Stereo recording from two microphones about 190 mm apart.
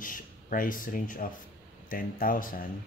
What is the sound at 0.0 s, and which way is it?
Speech, 45° left (ahead or behind).